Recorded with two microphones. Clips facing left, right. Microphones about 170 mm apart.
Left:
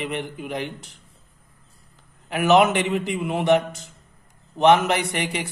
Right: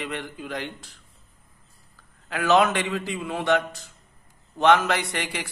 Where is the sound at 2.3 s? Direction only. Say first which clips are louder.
Left 3 dB; 20° left (ahead or behind).